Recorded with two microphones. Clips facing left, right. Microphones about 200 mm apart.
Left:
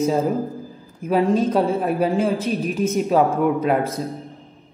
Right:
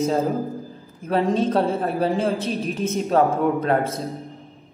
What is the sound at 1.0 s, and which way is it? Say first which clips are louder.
A man's voice: left 2 dB; 5° left (ahead or behind).